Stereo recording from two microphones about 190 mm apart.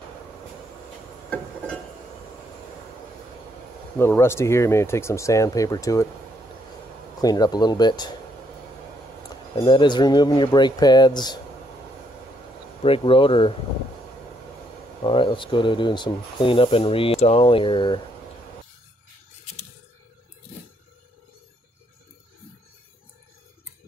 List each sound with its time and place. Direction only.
4.0 s speech: 15° left (ahead or behind)
7.2 s speech: 20° left (ahead or behind)
9.6 s speech: 25° left (ahead or behind)
12.8 s speech: 30° left (ahead or behind)
15.0 s speech: 25° left (ahead or behind)